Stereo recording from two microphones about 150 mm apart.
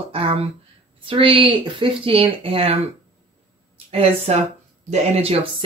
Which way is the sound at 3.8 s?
45° right (ahead or behind).